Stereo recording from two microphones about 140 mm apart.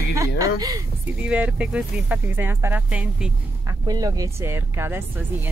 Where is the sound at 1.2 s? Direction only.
10° right (ahead or behind).